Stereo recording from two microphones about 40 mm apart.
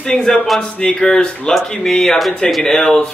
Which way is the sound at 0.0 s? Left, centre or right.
Centre.